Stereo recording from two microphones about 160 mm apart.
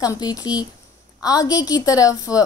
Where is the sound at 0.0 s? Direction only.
20° left (ahead or behind).